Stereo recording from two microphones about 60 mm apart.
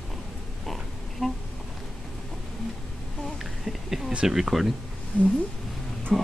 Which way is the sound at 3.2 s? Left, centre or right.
Centre.